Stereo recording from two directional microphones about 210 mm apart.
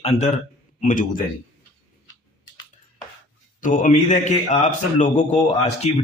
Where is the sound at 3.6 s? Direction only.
40° left (ahead or behind).